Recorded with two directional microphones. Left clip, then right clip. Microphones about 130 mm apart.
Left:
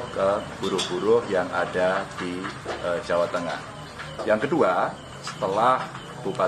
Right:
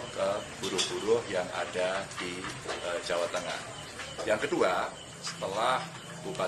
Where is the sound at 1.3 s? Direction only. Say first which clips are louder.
Left 8 dB; 30° right (ahead or behind).